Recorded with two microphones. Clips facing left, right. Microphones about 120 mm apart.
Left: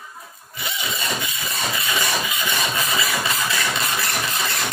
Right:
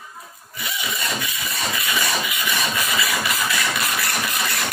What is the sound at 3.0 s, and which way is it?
Engine, 30° left (ahead or behind).